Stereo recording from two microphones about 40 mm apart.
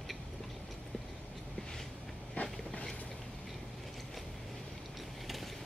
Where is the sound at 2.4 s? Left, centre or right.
Left.